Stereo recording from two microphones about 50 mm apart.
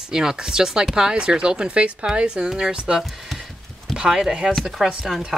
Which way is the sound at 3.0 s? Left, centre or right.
Centre.